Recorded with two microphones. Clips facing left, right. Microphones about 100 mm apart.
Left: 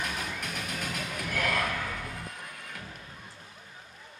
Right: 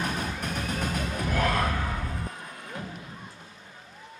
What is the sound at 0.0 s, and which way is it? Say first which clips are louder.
Music: right 4 dB; 40° right (ahead or behind).